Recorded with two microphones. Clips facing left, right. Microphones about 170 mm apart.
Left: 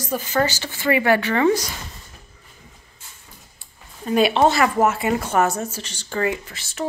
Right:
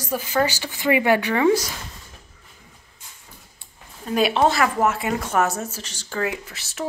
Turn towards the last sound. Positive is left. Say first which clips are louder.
# left 1 dB
turn(degrees=-5)  # may be behind; listen again after turning